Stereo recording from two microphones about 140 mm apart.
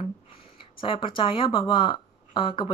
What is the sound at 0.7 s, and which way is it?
Speech, 40° left (ahead or behind).